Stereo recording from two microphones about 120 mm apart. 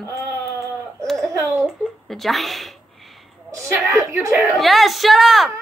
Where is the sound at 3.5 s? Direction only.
20° right (ahead or behind).